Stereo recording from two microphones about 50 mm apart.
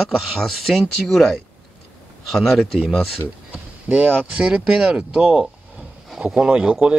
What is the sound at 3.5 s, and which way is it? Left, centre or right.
Speech, right.